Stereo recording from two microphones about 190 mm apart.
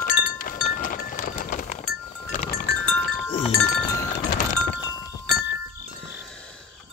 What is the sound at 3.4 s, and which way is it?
Music, 15° left (ahead or behind).